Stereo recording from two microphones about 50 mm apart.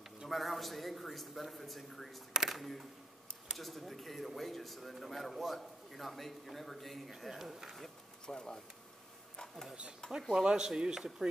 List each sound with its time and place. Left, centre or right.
0.3 s speech: centre
7.7 s speech: centre
10.3 s a man's voice: centre